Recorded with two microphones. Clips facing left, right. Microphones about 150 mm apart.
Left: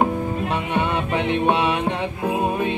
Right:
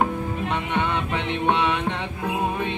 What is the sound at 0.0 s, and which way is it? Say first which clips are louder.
Music: left 3 dB; 10° left (ahead or behind).